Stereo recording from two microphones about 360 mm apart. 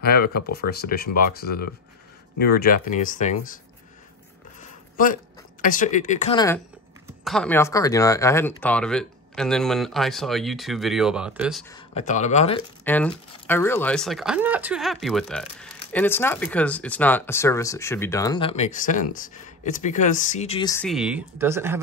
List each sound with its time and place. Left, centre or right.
0.0 s speech: left
4.6 s speech: left; by 11.6 s centre
11.7 s speech: centre
12.8 s speech: centre